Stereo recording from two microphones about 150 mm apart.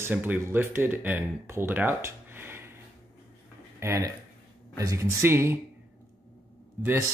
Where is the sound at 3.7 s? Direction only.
20° right (ahead or behind).